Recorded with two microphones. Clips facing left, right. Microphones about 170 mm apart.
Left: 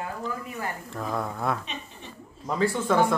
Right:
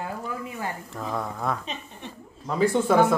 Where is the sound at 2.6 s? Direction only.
10° right (ahead or behind).